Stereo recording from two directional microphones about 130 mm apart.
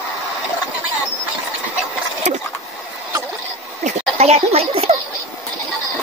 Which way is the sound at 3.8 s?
60° right (ahead or behind).